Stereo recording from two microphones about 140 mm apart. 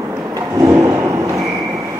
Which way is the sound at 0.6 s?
25° right (ahead or behind).